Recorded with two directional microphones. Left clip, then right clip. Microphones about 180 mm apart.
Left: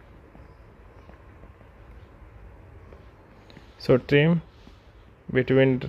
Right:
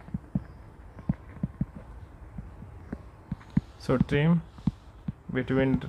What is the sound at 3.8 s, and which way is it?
Speech, 40° left (ahead or behind).